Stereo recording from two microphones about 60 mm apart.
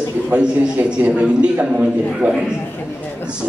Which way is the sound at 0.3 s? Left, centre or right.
Centre.